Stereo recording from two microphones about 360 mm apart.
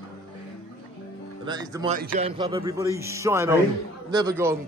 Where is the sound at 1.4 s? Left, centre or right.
Centre.